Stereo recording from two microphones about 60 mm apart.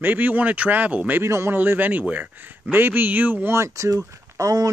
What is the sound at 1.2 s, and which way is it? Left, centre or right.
Speech, right.